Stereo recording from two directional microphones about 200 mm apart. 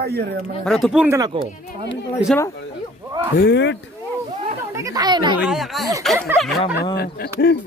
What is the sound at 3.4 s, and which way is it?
Speech, 60° left (ahead or behind).